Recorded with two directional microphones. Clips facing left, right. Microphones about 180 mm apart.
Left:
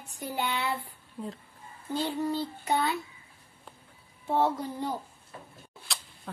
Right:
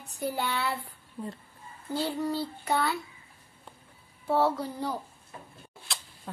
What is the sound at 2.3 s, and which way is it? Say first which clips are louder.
Child singing: even; 20° left (ahead or behind).